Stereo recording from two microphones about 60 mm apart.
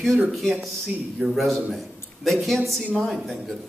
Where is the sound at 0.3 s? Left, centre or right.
Centre.